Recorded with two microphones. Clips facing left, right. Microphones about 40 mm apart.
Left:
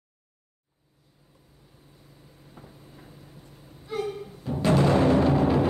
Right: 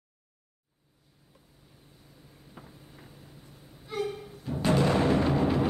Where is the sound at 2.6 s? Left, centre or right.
Right.